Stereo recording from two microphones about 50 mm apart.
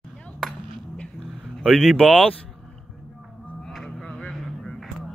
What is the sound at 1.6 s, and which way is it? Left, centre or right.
Speech, centre.